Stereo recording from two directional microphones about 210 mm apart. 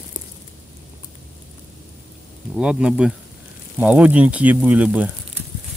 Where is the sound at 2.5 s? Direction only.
5° right (ahead or behind).